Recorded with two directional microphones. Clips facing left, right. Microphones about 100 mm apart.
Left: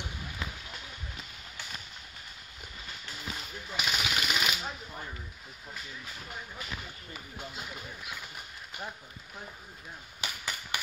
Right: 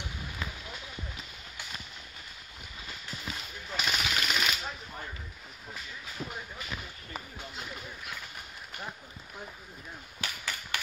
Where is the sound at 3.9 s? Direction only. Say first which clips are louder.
Left 1 dB; 10° left (ahead or behind).